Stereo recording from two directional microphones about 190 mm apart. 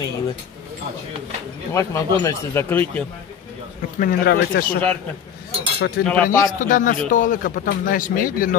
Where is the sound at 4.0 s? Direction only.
50° left (ahead or behind).